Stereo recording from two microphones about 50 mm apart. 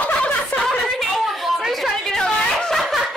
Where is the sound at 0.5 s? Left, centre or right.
Centre.